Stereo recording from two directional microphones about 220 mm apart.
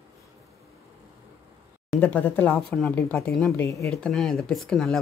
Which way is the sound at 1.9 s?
5° left (ahead or behind).